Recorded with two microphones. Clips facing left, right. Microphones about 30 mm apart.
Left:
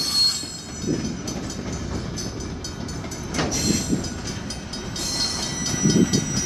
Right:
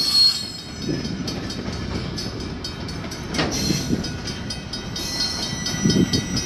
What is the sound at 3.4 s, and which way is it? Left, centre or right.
Train, right.